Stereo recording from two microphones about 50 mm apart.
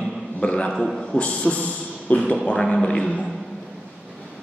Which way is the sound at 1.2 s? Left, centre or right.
Left.